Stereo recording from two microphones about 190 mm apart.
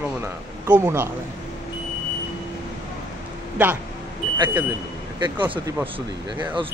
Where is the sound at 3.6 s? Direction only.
10° right (ahead or behind).